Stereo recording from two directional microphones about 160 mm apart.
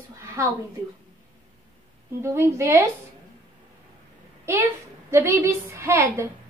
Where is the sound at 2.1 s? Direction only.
15° right (ahead or behind).